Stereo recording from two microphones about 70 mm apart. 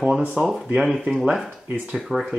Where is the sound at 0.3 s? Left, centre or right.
Centre.